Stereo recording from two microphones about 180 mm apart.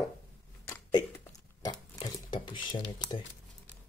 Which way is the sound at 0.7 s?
10° left (ahead or behind).